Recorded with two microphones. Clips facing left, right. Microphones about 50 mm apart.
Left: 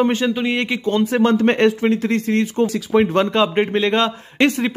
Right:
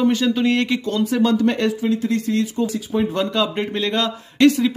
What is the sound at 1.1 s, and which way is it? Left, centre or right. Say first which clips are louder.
A man's voice: left 1 dB; left.